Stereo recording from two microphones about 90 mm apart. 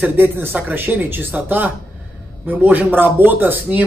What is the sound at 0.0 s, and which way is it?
A man's voice, 20° right (ahead or behind).